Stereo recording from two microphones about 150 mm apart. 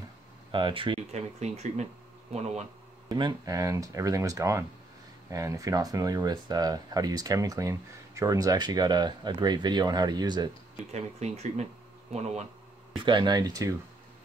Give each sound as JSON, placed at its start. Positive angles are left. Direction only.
{"t": 0.5, "sound": "speech", "side_deg": -35}
{"t": 1.1, "sound": "speech", "side_deg": -50}
{"t": 3.1, "sound": "speech", "side_deg": -25}
{"t": 10.9, "sound": "speech", "side_deg": -45}
{"t": 12.9, "sound": "speech", "side_deg": -30}